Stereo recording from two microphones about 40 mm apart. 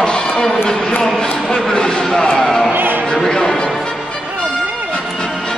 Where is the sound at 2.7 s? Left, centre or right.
Right.